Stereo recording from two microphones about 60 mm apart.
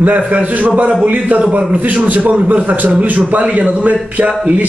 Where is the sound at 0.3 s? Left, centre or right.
Right.